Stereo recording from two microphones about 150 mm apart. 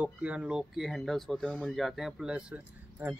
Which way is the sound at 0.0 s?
10° right (ahead or behind).